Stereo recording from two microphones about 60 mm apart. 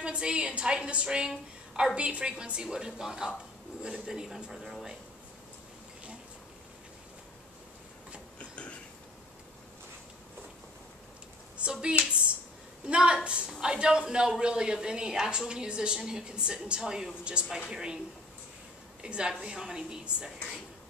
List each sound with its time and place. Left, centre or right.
0.0 s a woman's voice: centre
8.4 s a sound: left
11.5 s a woman's voice: centre
19.0 s a woman's voice: centre